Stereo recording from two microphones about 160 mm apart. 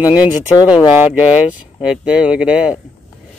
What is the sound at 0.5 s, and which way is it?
Speech, 30° left (ahead or behind).